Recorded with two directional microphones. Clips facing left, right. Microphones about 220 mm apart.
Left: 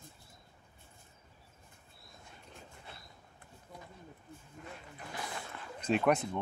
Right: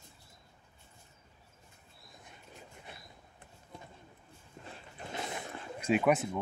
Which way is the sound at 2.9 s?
15° right (ahead or behind).